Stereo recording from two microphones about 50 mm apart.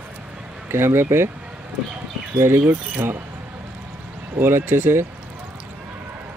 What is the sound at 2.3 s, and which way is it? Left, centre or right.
Speech, right.